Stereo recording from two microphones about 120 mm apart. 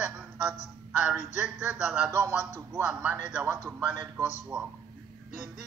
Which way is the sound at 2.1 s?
25° right (ahead or behind).